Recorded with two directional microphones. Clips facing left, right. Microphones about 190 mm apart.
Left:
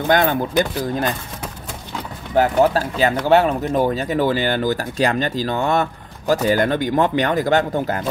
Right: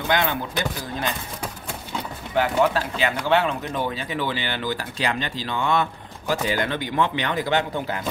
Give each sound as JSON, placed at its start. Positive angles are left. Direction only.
{"t": 0.1, "sound": "speech", "side_deg": 45}
{"t": 2.3, "sound": "speech", "side_deg": 40}